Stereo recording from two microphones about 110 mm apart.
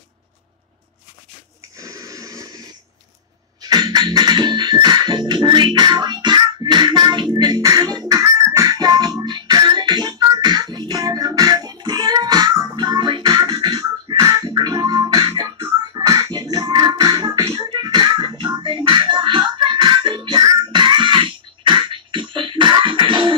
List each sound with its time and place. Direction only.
1.8 s wheeze: 30° right (ahead or behind)
3.6 s music: 40° right (ahead or behind)
17.6 s music: 45° right (ahead or behind)